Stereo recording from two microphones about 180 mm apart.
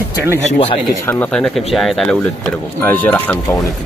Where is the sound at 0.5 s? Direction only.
35° left (ahead or behind).